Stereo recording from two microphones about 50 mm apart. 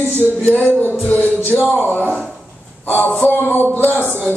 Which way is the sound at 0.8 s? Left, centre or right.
Left.